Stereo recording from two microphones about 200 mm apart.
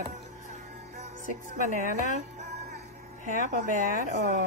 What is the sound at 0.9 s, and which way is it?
Speech, 40° right (ahead or behind).